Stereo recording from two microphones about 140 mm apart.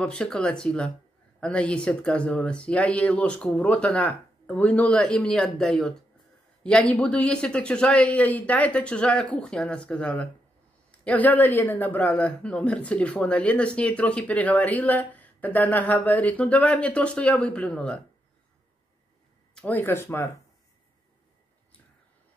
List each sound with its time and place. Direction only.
0.0 s a man's voice: 5° left (ahead or behind)
19.5 s a man's voice: 10° left (ahead or behind)